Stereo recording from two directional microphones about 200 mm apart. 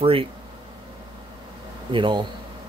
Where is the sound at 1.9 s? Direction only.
25° right (ahead or behind).